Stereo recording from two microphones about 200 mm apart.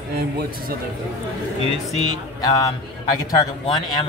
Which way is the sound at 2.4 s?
15° left (ahead or behind).